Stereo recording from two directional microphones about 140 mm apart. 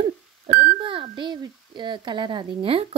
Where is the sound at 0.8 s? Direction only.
40° right (ahead or behind).